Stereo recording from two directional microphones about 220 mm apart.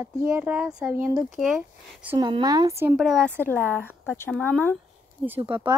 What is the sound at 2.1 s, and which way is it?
Speech, 20° right (ahead or behind).